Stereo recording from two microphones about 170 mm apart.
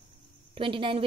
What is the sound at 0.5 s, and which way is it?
Speech, 30° right (ahead or behind).